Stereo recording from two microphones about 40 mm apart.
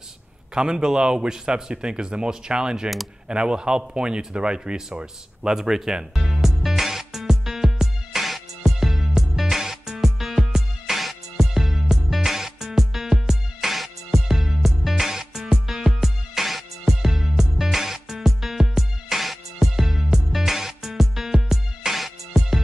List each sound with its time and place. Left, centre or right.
0.6 s a man's voice: centre
3.3 s a sound: right; by 10.4 s centre
10.4 s music: centre